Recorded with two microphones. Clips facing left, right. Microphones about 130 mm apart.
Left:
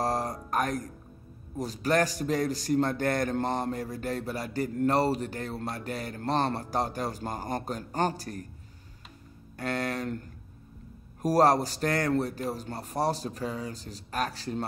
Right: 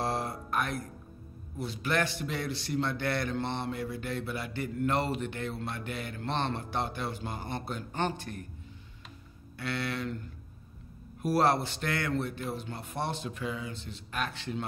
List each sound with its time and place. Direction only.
0.0 s music: 40° left (ahead or behind)
1.6 s a man's voice: 40° left (ahead or behind)
9.6 s a man's voice: 45° left (ahead or behind)